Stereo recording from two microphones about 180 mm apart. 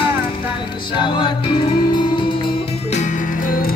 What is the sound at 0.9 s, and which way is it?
Music, 25° left (ahead or behind).